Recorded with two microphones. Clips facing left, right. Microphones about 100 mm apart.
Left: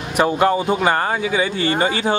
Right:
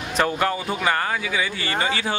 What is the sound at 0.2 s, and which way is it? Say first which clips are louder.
Speech: left 6 dB; 25° left (ahead or behind).